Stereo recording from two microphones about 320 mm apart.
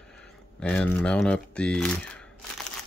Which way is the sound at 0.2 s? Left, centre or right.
Centre.